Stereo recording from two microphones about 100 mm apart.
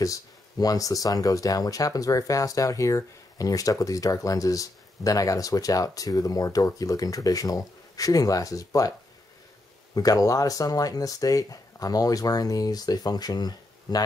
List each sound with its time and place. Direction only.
0.0 s speech: 35° left (ahead or behind)
9.9 s speech: 35° left (ahead or behind)